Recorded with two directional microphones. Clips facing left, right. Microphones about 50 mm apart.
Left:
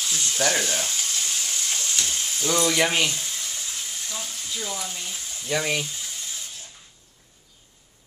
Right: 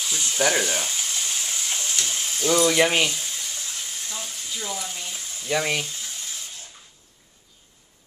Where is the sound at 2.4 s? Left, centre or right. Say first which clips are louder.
Right 3 dB; centre.